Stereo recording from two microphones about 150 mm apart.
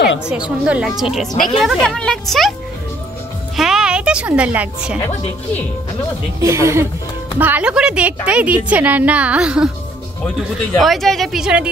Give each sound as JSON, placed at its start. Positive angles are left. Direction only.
{"t": 0.3, "sound": "a woman's voice", "side_deg": -5}
{"t": 3.5, "sound": "a woman's voice", "side_deg": -5}
{"t": 6.4, "sound": "a woman's voice", "side_deg": -20}
{"t": 10.8, "sound": "a woman's voice", "side_deg": 0}